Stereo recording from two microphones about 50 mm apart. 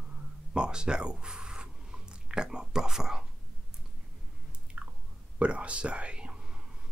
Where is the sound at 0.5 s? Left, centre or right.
Centre.